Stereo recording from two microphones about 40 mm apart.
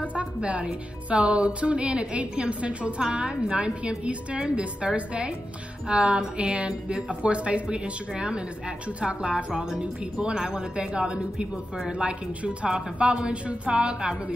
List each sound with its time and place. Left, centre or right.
0.0 s a woman's voice: right